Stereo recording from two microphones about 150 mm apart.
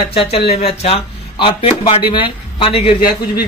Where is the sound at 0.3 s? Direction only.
40° left (ahead or behind).